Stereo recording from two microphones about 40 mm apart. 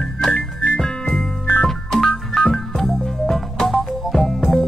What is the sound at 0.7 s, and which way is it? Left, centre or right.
Music, centre.